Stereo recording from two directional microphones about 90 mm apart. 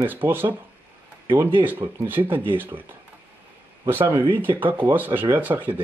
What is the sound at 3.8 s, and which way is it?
Speech, 30° right (ahead or behind).